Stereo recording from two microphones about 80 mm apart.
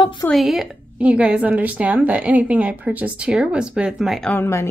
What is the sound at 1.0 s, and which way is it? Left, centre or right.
A woman's voice, centre.